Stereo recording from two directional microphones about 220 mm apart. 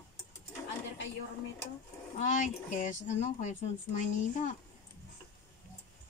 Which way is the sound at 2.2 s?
35° left (ahead or behind).